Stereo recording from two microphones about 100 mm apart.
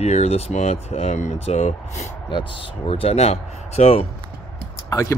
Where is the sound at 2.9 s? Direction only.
85° left.